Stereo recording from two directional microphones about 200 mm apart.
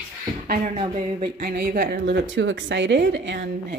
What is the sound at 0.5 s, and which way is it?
A woman's voice, 35° right (ahead or behind).